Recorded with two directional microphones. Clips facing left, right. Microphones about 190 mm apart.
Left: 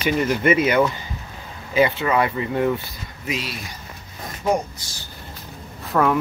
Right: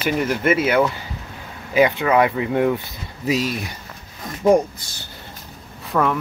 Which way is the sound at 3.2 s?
40° right (ahead or behind).